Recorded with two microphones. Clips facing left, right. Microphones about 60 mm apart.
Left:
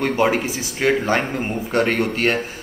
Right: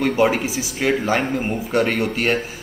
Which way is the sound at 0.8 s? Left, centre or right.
Centre.